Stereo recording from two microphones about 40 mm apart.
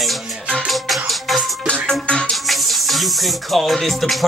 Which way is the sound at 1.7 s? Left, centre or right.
Left.